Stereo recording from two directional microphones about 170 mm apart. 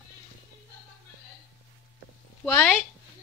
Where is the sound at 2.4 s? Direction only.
10° left (ahead or behind).